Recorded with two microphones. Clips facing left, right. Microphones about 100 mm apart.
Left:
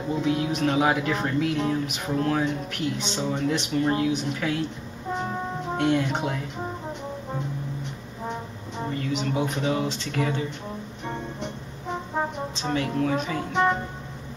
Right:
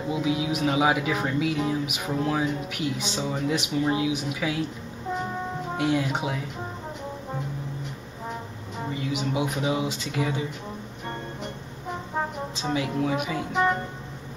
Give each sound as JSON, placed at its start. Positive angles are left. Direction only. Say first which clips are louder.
{"t": 0.1, "sound": "speech", "louder": "left 1 dB", "side_deg": -5}
{"t": 5.8, "sound": "speech", "louder": "left 2 dB", "side_deg": -5}
{"t": 8.3, "sound": "speech", "louder": "left 2 dB", "side_deg": -5}
{"t": 11.1, "sound": "music", "louder": "left 2 dB", "side_deg": 0}
{"t": 12.5, "sound": "speech", "louder": "even", "side_deg": -10}